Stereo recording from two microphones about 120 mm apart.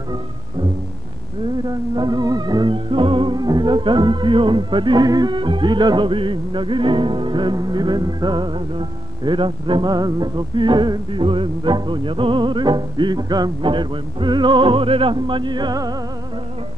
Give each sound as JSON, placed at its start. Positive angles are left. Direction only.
{"t": 1.7, "sound": "music", "side_deg": -35}